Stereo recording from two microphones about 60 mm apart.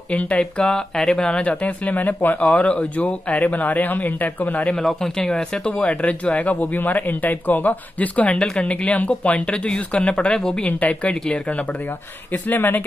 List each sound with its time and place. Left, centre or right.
0.1 s speech: centre
4.7 s speech: centre
5.7 s speech: left
10.7 s speech: left
12.3 s speech: left